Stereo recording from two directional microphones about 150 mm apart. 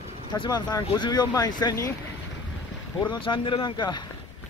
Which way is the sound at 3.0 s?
30° left (ahead or behind).